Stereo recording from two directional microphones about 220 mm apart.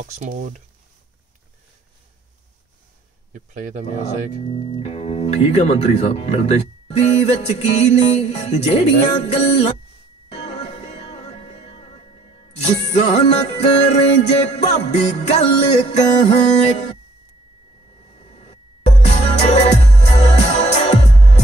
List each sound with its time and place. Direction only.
0.1 s speech: 35° right (ahead or behind)
3.3 s speech: 35° right (ahead or behind)
4.5 s speech: 30° left (ahead or behind)
9.2 s music: 30° left (ahead or behind)
18.1 s music: 30° left (ahead or behind)